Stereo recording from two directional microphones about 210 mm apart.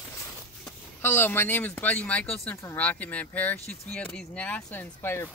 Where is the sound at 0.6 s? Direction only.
10° left (ahead or behind).